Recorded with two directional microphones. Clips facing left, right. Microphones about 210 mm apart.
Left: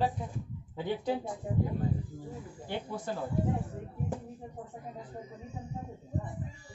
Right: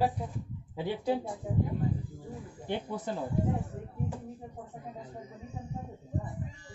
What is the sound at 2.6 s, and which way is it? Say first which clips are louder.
Speech: right 3 dB; 20° right (ahead or behind).